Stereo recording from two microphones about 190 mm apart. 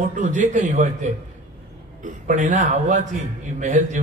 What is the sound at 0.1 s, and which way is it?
Speech, 40° right (ahead or behind).